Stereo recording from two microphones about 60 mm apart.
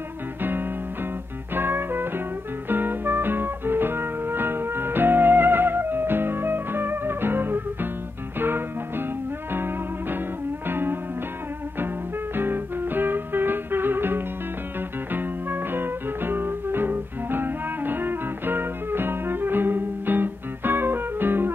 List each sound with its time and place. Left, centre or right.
0.4 s music: right
12.4 s music: right